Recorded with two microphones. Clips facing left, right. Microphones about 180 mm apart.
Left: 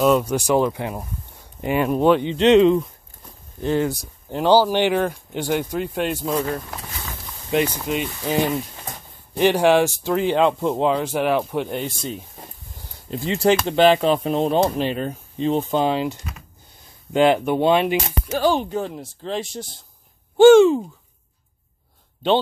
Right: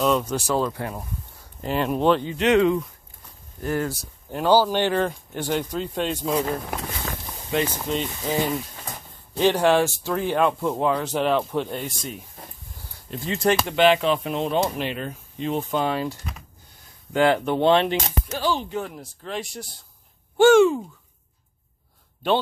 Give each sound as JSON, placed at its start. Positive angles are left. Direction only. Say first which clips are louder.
{"t": 0.0, "sound": "speech", "louder": "left 4 dB", "side_deg": 10}
{"t": 2.2, "sound": "speech", "louder": "left 5 dB", "side_deg": 25}
{"t": 7.5, "sound": "speech", "louder": "left 3 dB", "side_deg": 15}
{"t": 13.1, "sound": "speech", "louder": "left 4 dB", "side_deg": 30}
{"t": 18.3, "sound": "speech", "louder": "left 6 dB", "side_deg": 55}
{"t": 18.8, "sound": "speech", "louder": "left 4 dB", "side_deg": 30}